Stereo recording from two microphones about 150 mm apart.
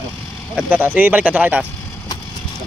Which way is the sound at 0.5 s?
10° right (ahead or behind).